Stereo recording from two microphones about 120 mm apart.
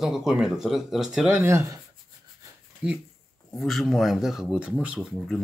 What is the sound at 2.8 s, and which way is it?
Speech, 10° right (ahead or behind).